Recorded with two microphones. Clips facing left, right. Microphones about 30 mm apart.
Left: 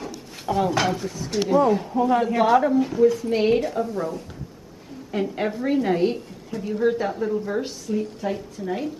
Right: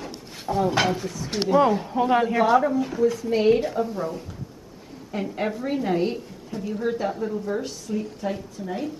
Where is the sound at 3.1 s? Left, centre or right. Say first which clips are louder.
Even; centre.